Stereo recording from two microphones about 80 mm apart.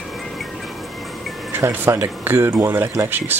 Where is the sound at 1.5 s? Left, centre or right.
Right.